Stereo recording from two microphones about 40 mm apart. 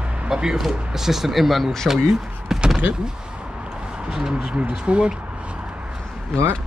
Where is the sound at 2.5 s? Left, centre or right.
Centre.